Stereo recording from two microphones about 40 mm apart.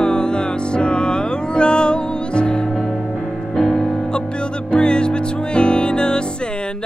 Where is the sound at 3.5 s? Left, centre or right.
Left.